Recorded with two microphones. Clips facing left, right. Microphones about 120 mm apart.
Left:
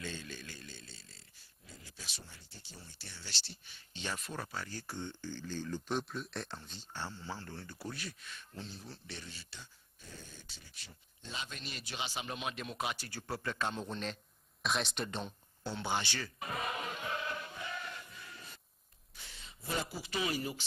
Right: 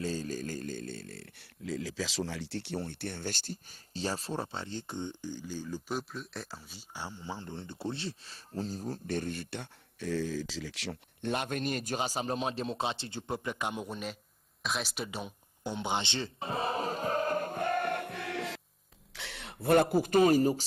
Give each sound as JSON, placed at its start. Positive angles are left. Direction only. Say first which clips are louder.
{"t": 0.0, "sound": "speech", "louder": "right 10 dB", "side_deg": -40}
{"t": 14.6, "sound": "a sound", "louder": "even", "side_deg": 0}
{"t": 19.1, "sound": "speech", "louder": "right 12 dB", "side_deg": -75}